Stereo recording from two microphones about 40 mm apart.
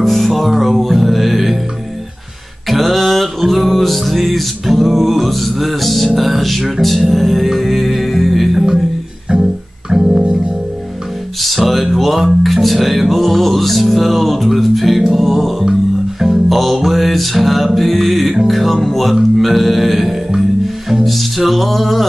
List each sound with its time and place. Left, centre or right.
0.0 s music: centre
2.7 s music: centre
9.3 s music: centre
11.4 s music: centre